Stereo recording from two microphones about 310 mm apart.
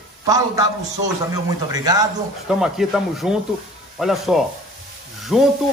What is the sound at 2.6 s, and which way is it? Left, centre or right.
A man's voice, centre.